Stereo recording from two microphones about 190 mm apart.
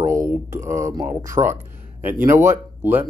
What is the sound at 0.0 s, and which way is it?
Speech, 15° right (ahead or behind).